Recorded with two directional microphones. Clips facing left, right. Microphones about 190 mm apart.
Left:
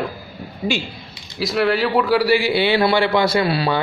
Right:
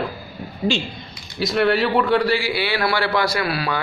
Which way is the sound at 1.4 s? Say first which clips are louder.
Even; centre (ahead or behind).